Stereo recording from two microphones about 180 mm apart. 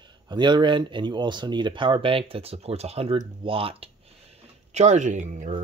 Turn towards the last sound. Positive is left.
turn(degrees=-40)  # may be behind; listen again after turning